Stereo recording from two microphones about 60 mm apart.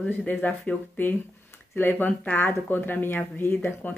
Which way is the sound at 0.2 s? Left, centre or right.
Left.